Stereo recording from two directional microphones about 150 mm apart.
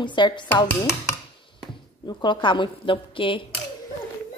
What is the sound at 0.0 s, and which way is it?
Speech, 30° left (ahead or behind).